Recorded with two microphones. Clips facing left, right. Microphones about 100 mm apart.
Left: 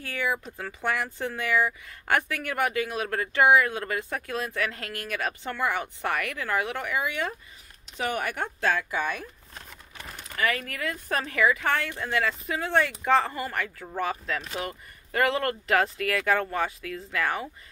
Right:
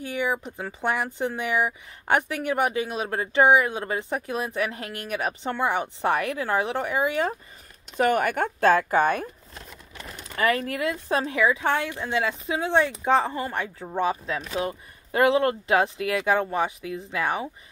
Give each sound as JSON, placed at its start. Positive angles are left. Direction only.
{"t": 0.0, "sound": "a woman's voice", "side_deg": -20}
{"t": 8.0, "sound": "speech", "side_deg": -50}
{"t": 10.3, "sound": "a woman's voice", "side_deg": -30}